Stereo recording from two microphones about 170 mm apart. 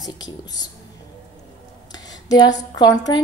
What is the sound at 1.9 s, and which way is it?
Speech, 25° left (ahead or behind).